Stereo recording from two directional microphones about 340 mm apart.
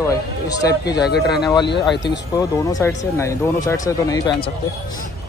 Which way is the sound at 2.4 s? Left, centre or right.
Centre.